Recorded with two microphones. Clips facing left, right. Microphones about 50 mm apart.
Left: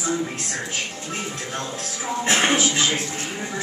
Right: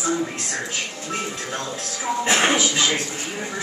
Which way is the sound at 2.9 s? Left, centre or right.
Centre.